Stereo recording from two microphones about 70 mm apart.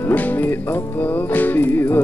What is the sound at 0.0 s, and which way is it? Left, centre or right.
Music, left.